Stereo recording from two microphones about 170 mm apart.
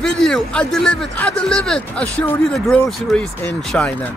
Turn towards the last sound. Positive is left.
turn(degrees=5)  # may be behind; listen again after turning